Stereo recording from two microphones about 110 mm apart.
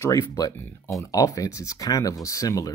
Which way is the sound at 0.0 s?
25° left (ahead or behind).